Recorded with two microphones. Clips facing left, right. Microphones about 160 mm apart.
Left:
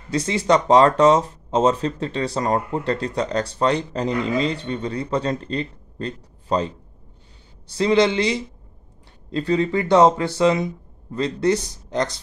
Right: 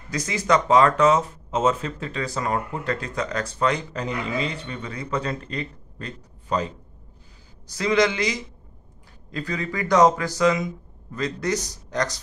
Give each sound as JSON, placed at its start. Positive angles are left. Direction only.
{"t": 0.1, "sound": "speech", "side_deg": 30}
{"t": 7.7, "sound": "speech", "side_deg": 30}